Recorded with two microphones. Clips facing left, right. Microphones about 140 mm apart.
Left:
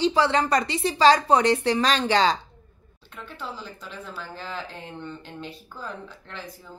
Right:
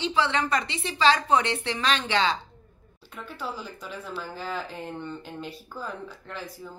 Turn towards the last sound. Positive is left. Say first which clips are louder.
# right 1 dB
turn(degrees=-5)  # may be behind; listen again after turning